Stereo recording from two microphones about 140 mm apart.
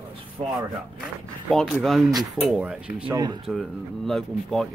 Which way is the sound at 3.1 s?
30° right (ahead or behind).